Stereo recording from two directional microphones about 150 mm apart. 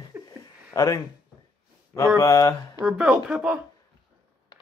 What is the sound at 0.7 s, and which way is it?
Speech, 20° left (ahead or behind).